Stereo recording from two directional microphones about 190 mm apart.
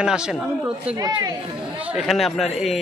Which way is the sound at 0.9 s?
20° right (ahead or behind).